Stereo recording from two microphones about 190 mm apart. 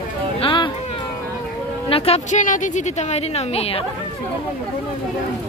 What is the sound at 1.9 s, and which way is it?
A woman's voice, 30° left (ahead or behind).